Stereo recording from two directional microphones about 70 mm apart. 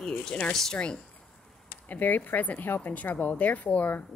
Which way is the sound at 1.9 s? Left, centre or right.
Left.